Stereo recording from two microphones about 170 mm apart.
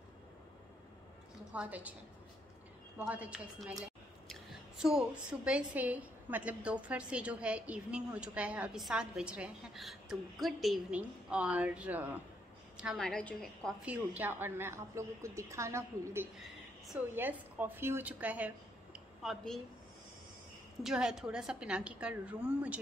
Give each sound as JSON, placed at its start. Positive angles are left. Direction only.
{"t": 1.5, "sound": "a woman's voice", "side_deg": -10}
{"t": 3.0, "sound": "a woman's voice", "side_deg": -10}
{"t": 13.8, "sound": "a woman's voice", "side_deg": -10}
{"t": 19.2, "sound": "a woman's voice", "side_deg": 0}
{"t": 20.8, "sound": "a woman's voice", "side_deg": -5}